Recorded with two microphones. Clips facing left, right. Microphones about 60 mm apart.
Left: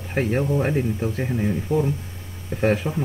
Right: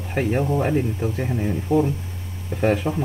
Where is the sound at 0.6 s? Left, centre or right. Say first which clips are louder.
Right 1 dB; centre.